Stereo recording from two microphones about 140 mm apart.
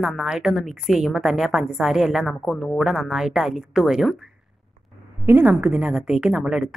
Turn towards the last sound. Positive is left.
turn(degrees=-5)  # may be behind; listen again after turning